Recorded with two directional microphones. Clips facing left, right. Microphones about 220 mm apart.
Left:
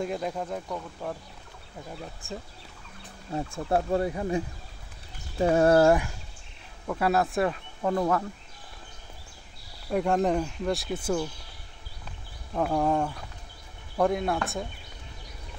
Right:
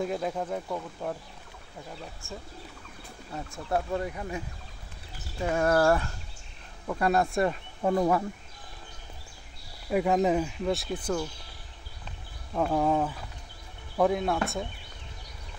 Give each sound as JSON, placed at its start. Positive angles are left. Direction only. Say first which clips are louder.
{"t": 0.0, "sound": "speech", "louder": "right 1 dB", "side_deg": 0}
{"t": 3.3, "sound": "speech", "louder": "left 4 dB", "side_deg": 30}
{"t": 5.4, "sound": "speech", "louder": "left 5 dB", "side_deg": 30}
{"t": 6.9, "sound": "speech", "louder": "even", "side_deg": 5}
{"t": 7.8, "sound": "speech", "louder": "right 1 dB", "side_deg": -10}
{"t": 9.8, "sound": "speech", "louder": "even", "side_deg": -5}
{"t": 12.5, "sound": "speech", "louder": "even", "side_deg": 0}